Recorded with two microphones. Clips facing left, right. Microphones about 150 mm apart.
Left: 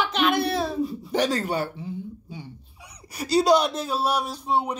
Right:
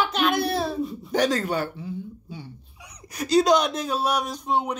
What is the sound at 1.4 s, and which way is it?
Speech, 45° left (ahead or behind).